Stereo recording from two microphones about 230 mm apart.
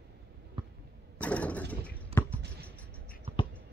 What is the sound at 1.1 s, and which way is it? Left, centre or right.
Mechanisms, centre.